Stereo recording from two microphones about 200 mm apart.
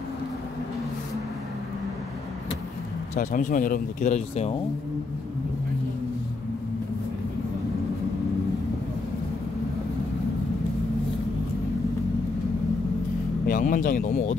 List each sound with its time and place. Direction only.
3.2 s speech: 40° left (ahead or behind)
13.5 s speech: 45° left (ahead or behind)